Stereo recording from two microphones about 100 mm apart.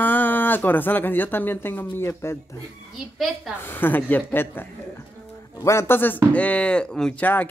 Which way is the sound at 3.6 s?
20° left (ahead or behind).